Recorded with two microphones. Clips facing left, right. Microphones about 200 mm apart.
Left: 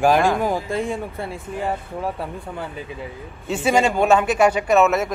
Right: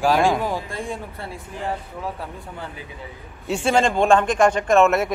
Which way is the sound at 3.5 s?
5° left (ahead or behind).